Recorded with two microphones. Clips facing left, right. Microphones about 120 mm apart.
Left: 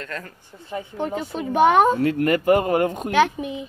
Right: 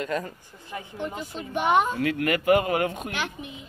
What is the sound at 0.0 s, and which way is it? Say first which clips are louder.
Speech: right 5 dB; 15° right (ahead or behind).